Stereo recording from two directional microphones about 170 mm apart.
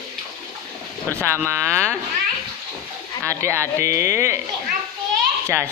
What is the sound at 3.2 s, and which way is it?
Speech, 15° right (ahead or behind).